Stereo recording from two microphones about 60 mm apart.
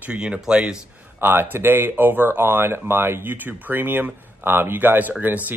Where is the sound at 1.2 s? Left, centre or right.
Right.